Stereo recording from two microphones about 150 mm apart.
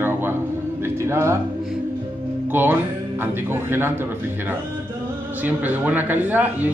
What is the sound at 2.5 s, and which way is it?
Speech, 10° right (ahead or behind).